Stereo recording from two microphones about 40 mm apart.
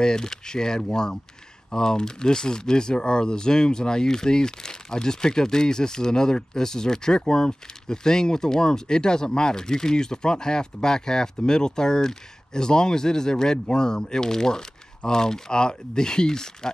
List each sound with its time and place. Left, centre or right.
0.0 s speech: centre